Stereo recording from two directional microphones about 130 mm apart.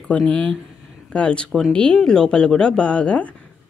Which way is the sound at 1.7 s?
5° left (ahead or behind).